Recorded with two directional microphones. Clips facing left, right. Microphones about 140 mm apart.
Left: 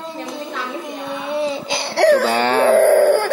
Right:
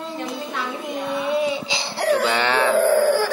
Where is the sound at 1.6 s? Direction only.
70° left (ahead or behind); by 2.2 s 85° left.